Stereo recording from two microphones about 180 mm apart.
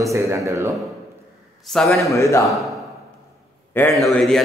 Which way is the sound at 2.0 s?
15° left (ahead or behind).